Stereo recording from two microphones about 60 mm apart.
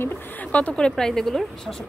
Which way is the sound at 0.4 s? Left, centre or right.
Left.